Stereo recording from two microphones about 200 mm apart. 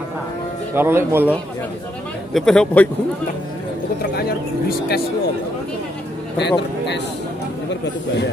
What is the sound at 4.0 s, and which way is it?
Speech, 50° left (ahead or behind).